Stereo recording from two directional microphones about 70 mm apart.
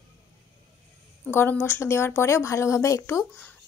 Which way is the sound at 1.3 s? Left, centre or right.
Left.